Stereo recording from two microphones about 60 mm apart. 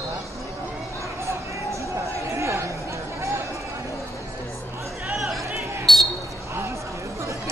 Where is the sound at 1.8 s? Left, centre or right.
Right.